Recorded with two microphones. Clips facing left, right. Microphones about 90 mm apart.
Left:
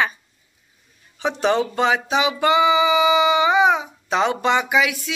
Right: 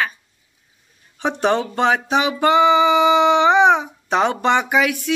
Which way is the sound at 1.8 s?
55° right (ahead or behind).